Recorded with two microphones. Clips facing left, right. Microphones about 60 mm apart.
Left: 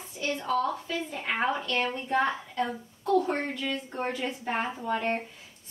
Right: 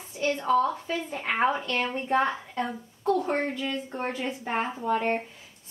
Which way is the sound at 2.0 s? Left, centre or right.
Right.